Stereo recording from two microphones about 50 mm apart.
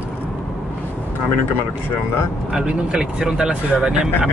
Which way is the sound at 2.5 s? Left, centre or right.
Centre.